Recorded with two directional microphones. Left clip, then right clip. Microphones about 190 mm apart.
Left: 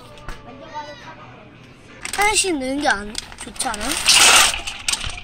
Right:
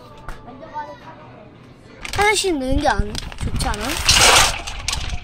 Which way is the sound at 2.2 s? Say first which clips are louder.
Right 1 dB; centre (ahead or behind).